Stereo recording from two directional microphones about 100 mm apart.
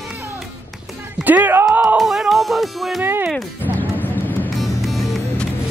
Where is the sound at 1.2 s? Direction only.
15° right (ahead or behind).